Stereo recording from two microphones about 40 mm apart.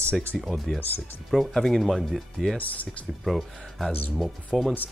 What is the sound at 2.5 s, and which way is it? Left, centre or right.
Speech, left.